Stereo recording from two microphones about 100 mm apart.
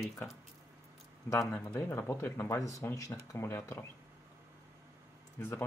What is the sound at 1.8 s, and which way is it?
Speech, 25° left (ahead or behind).